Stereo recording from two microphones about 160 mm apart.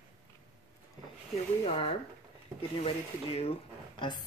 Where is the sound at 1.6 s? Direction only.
35° left (ahead or behind).